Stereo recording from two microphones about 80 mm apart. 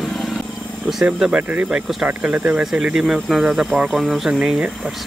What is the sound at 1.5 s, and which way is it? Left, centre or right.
Speech, right.